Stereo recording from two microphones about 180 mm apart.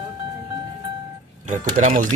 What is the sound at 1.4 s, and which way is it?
Speech, 45° right (ahead or behind).